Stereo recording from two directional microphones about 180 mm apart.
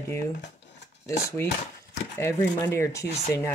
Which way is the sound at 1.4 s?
15° left (ahead or behind).